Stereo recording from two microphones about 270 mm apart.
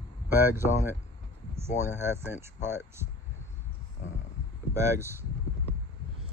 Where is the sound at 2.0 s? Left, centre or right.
Centre.